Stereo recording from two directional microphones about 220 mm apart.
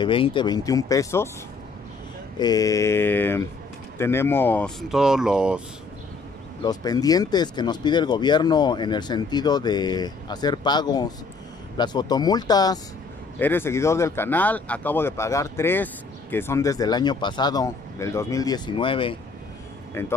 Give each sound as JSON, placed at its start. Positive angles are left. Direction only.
{"t": 0.0, "sound": "speech", "side_deg": 25}
{"t": 2.3, "sound": "speech", "side_deg": 15}
{"t": 6.6, "sound": "speech", "side_deg": 15}
{"t": 19.9, "sound": "speech", "side_deg": 10}